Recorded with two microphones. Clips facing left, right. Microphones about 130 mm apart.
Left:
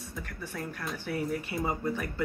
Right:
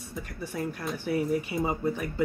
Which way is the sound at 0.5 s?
20° right (ahead or behind).